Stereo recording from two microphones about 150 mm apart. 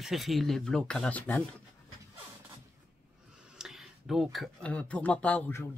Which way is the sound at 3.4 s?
5° right (ahead or behind).